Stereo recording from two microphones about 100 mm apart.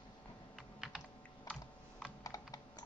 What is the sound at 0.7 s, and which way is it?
Typing, 5° right (ahead or behind).